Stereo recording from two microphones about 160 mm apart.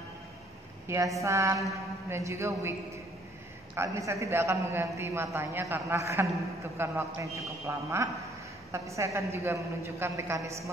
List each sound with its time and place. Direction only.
0.8 s a man's voice: 20° right (ahead or behind)
3.7 s a man's voice: 15° right (ahead or behind)